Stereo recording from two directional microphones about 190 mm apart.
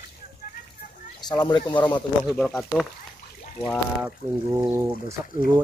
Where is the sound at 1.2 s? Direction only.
20° left (ahead or behind).